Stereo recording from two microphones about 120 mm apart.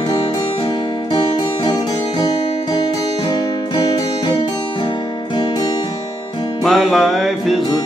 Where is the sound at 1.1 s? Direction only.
45° left (ahead or behind).